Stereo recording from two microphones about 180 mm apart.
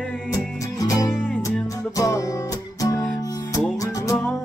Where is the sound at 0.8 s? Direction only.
20° left (ahead or behind).